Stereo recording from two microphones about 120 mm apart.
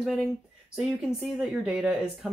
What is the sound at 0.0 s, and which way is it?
Speech, 5° right (ahead or behind).